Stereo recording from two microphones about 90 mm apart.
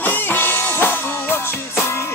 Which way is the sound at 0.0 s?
20° left (ahead or behind).